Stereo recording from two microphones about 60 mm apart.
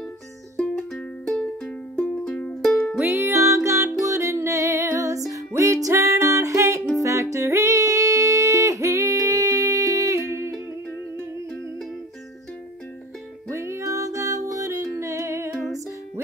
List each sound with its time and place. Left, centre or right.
0.6 s music: centre
2.0 s music: left
3.0 s music: right
13.5 s music: right